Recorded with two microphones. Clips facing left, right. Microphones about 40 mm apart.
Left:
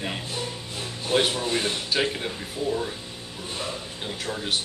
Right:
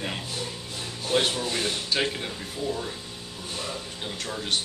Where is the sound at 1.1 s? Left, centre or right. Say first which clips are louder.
Left 2 dB; centre.